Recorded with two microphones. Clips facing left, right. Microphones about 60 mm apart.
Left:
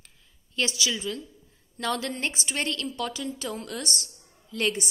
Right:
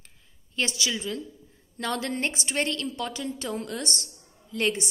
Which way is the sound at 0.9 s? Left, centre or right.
Right.